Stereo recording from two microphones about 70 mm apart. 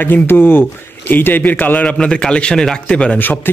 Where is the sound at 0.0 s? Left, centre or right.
Left; by 3.2 s centre.